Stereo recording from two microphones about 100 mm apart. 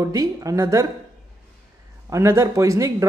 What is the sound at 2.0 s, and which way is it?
Speech, 30° right (ahead or behind).